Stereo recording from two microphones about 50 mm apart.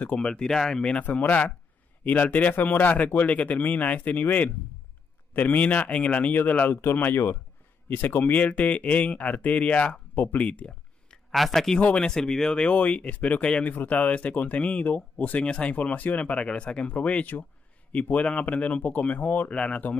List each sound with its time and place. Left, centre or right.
0.1 s speech: centre
1.0 s speech: left
6.8 s speech: left
8.2 s speech: left
10.1 s speech: left
10.4 s speech: left
11.3 s speech: centre
11.8 s speech: centre
12.6 s speech: left
13.4 s speech: left
13.7 s speech: left
19.5 s speech: centre